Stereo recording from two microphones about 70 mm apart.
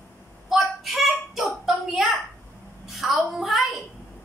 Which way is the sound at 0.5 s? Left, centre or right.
Centre.